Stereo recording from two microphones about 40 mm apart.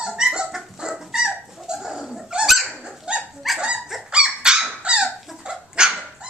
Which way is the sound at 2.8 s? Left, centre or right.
Right.